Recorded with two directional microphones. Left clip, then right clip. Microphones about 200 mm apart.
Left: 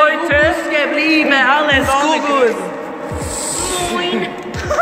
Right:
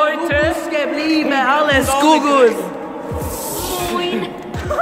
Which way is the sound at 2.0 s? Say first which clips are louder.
Right 2 dB; 50° right (ahead or behind).